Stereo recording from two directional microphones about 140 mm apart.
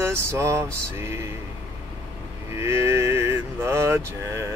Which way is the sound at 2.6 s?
20° right (ahead or behind).